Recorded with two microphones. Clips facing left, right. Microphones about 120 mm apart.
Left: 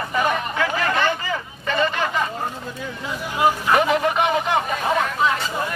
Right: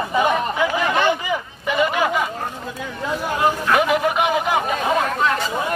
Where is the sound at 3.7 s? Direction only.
5° right (ahead or behind).